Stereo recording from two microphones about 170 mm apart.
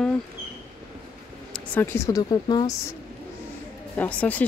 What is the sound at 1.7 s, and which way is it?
Speech, 15° left (ahead or behind).